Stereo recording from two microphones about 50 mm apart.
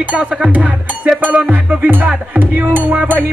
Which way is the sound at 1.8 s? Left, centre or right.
Right.